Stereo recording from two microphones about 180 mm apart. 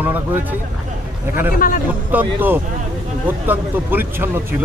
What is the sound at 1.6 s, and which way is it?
Speech, 50° left (ahead or behind).